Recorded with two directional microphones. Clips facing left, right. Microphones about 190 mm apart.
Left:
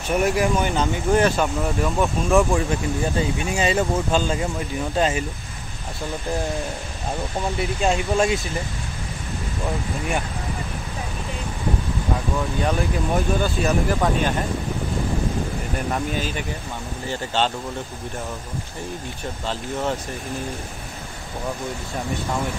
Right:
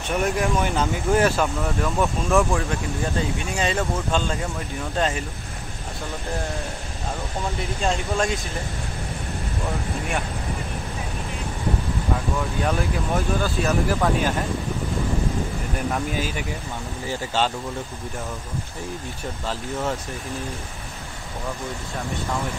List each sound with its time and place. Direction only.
0.1 s speech: 5° left (ahead or behind)
1.6 s speech: 5° left (ahead or behind)
7.8 s speech: 10° left (ahead or behind)
12.6 s speech: centre (ahead or behind)
16.1 s speech: 5° right (ahead or behind)